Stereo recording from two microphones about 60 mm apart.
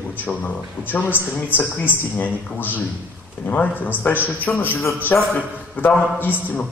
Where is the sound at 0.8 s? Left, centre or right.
Left.